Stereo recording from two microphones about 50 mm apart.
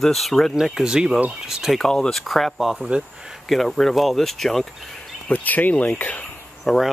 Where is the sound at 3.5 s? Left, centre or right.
Centre.